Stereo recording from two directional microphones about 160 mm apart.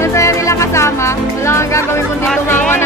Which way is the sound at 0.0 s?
20° left (ahead or behind).